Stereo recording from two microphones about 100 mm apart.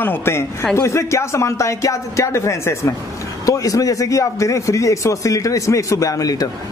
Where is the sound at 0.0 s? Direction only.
20° left (ahead or behind).